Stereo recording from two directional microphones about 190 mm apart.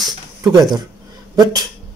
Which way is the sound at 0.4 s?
20° right (ahead or behind).